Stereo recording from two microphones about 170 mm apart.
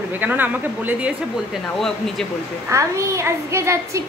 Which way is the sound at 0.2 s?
10° right (ahead or behind).